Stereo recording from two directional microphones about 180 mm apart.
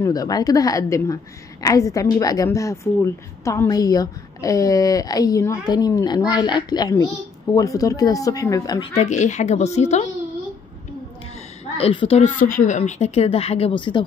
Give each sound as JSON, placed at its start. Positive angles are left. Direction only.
{"t": 0.0, "sound": "a woman's voice", "side_deg": 20}
{"t": 8.9, "sound": "speech", "side_deg": 40}
{"t": 11.8, "sound": "a woman's voice", "side_deg": 30}
{"t": 12.2, "sound": "speech", "side_deg": 50}